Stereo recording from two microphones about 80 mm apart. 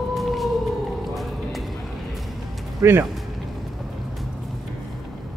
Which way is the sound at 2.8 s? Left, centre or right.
Right.